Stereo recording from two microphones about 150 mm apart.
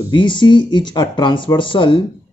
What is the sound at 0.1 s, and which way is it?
Speech, 30° left (ahead or behind).